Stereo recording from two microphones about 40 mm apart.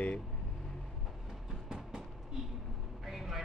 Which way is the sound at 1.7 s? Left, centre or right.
Centre.